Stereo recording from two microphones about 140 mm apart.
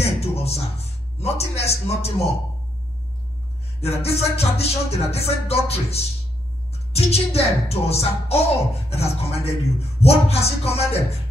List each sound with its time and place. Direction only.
0.0 s music: 45° left (ahead or behind)
3.8 s music: 45° left (ahead or behind)